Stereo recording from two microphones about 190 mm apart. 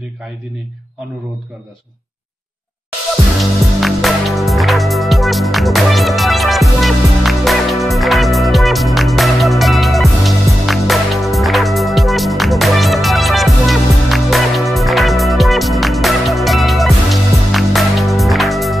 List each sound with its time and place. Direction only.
3.3 s music: centre (ahead or behind)